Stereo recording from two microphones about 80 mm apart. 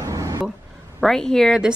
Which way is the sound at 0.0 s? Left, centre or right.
Right.